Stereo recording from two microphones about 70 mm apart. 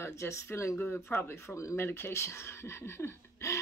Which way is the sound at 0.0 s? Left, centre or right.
Left.